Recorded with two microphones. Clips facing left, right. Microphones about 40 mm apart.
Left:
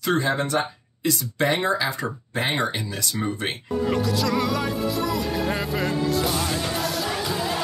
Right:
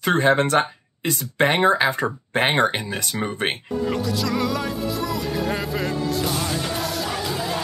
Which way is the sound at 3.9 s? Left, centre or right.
Centre.